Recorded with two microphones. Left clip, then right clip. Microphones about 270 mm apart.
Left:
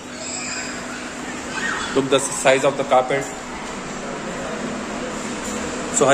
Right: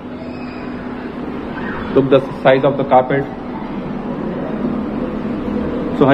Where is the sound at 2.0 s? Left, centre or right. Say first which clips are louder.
Right 4 dB; centre.